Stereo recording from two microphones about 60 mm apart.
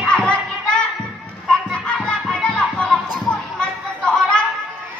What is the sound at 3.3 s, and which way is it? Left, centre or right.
Children playing, centre.